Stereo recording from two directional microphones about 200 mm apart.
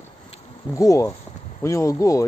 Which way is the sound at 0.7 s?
15° left (ahead or behind).